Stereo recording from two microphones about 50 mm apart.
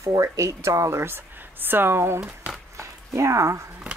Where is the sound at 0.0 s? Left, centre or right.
Right.